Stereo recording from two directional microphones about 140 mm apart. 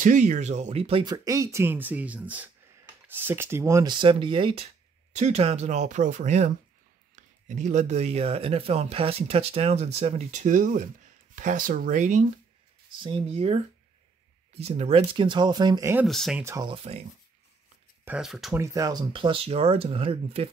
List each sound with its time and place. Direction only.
0.0 s speech: 65° right (ahead or behind); by 1.0 s 45° right (ahead or behind)
1.0 s speech: 25° right (ahead or behind)
3.9 s speech: 35° right (ahead or behind)
5.1 s speech: 55° right (ahead or behind)
13.0 s speech: 45° right (ahead or behind)
16.1 s speech: centre (ahead or behind)
16.3 s speech: 20° right (ahead or behind)
16.6 s speech: 40° right (ahead or behind)
18.0 s speech: 5° right (ahead or behind)
18.5 s speech: 20° right (ahead or behind); by 20.4 s 45° right (ahead or behind)